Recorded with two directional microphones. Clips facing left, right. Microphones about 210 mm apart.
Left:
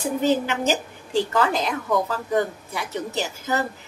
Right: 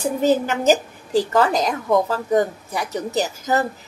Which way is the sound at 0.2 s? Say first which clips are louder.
Right 3 dB; 40° right (ahead or behind).